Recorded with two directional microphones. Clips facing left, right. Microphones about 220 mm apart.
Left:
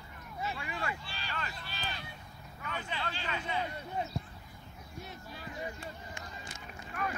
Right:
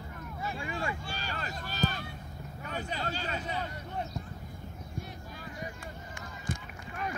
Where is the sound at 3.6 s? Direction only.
10° left (ahead or behind).